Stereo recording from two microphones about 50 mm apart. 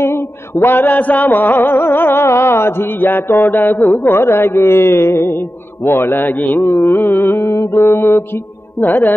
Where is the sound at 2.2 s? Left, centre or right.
Left.